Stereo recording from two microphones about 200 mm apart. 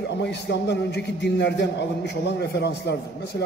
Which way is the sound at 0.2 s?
60° left (ahead or behind).